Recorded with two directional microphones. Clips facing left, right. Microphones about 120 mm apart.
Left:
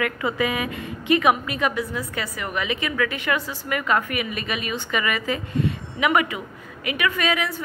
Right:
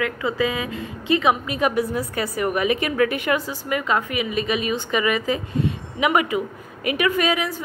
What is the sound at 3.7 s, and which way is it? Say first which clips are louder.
Speech: even; 20° right (ahead or behind).